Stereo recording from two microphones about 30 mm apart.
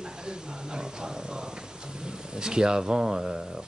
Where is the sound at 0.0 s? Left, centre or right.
Right.